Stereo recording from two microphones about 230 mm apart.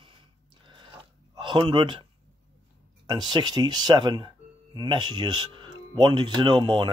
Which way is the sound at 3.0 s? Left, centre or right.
Centre.